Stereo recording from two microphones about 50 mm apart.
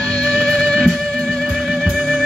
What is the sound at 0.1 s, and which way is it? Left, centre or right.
Music, left.